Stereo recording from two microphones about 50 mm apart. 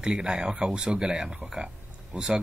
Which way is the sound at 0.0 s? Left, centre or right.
Centre.